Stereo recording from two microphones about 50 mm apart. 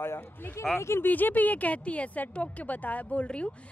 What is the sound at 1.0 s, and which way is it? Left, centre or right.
Speech, left.